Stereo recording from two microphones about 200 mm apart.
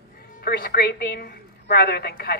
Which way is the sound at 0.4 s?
50° left (ahead or behind).